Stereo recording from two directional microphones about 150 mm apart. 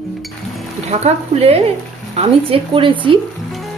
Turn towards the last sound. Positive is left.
turn(degrees=-35)  # may be behind; listen again after turning